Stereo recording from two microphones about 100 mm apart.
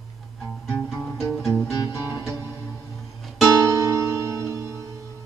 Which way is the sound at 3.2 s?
Centre (ahead or behind).